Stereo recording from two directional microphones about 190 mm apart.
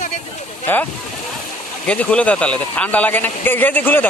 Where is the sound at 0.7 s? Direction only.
10° left (ahead or behind).